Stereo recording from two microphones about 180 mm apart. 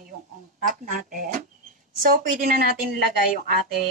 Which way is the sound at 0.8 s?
50° right (ahead or behind).